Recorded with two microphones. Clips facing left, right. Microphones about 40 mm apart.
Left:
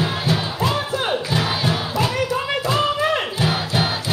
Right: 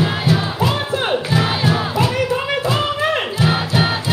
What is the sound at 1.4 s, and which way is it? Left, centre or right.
Crowd, right.